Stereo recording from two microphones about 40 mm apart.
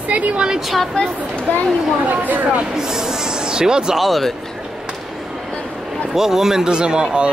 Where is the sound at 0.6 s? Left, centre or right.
Centre.